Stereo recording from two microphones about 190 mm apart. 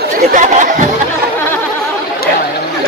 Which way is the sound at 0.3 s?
40° right (ahead or behind).